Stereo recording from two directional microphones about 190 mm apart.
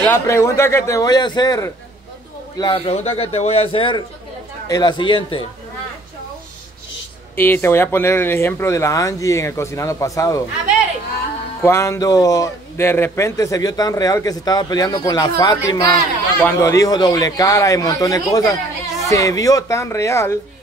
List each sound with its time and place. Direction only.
0.0 s a man's voice: 15° left (ahead or behind)
7.3 s a man's voice: 10° left (ahead or behind)
11.6 s a man's voice: 15° left (ahead or behind)